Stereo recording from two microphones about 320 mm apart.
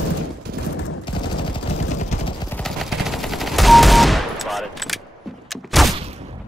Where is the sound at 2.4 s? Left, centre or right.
Centre.